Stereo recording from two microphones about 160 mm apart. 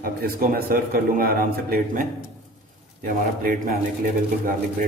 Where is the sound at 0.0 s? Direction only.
65° right (ahead or behind).